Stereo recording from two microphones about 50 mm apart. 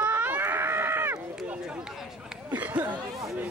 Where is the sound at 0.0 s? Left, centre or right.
Right.